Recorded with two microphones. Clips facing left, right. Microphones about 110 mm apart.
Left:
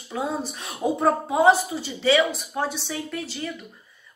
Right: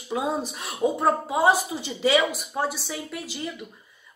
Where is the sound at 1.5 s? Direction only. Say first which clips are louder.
Even; 15° right (ahead or behind).